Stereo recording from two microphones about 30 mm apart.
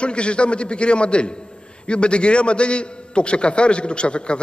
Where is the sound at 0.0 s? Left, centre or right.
Left.